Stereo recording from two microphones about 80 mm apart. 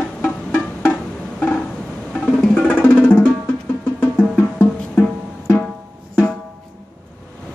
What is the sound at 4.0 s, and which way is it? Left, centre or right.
Music, left.